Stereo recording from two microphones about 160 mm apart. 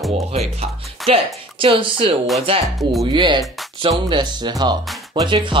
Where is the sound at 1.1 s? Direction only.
35° right (ahead or behind).